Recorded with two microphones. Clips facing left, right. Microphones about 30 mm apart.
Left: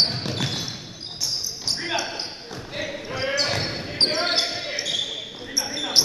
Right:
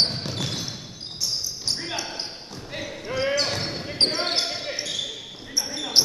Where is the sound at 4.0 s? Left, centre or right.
Centre.